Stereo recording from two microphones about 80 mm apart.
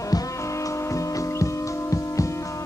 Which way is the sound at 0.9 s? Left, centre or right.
Left.